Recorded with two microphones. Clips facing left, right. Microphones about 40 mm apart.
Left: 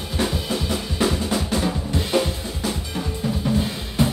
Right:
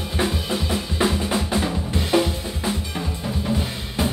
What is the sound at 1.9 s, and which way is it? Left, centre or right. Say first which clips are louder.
Drum kit: right 3 dB; centre.